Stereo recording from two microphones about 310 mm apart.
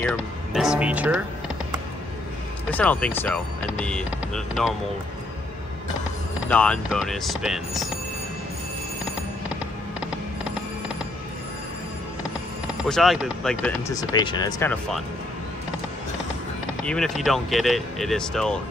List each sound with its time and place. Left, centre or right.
0.0 s speech: centre
2.7 s speech: centre
6.5 s speech: centre
12.8 s speech: centre
16.8 s speech: centre